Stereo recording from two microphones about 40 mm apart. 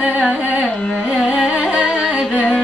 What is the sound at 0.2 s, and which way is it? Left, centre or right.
Carnatic music, right.